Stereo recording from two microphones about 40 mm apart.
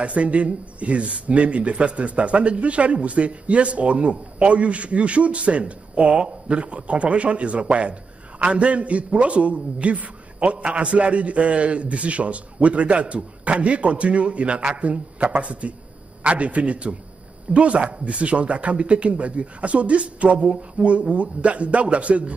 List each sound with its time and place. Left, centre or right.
0.0 s speech: right